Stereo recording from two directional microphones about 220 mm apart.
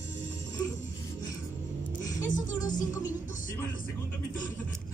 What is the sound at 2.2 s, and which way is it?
Music, 35° left (ahead or behind).